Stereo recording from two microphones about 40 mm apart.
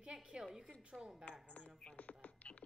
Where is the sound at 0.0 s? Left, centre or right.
Centre.